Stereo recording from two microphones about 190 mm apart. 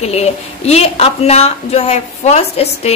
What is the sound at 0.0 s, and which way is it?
A woman's voice, 35° left (ahead or behind).